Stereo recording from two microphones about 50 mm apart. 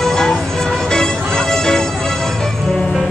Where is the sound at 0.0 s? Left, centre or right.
Centre.